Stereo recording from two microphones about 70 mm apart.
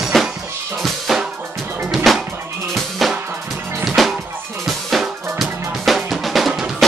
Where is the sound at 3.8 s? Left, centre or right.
Centre.